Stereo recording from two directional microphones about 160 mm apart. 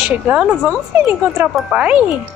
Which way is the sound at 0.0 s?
10° right (ahead or behind).